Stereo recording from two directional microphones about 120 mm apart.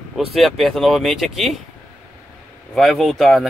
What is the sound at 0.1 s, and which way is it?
Speech, centre (ahead or behind).